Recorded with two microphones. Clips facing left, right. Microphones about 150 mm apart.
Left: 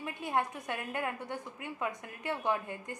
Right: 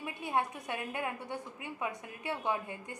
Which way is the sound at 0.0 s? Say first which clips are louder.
Left 1 dB; 15° right (ahead or behind).